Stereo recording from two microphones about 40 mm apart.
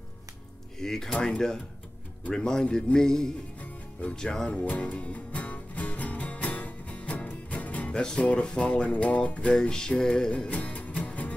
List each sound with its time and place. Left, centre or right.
0.7 s music: centre
2.3 s music: centre
4.5 s music: left; by 10.5 s centre
10.5 s music: left